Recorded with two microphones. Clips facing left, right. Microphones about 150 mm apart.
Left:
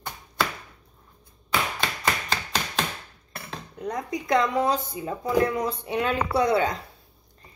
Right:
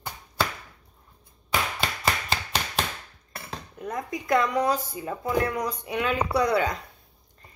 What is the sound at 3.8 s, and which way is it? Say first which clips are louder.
Speech: left 2 dB; 20° left (ahead or behind).